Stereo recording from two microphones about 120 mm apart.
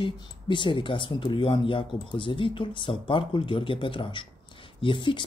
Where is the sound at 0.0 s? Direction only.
45° left (ahead or behind).